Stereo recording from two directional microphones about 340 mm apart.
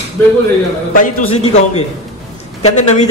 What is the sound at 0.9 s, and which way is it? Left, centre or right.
A man's voice, left.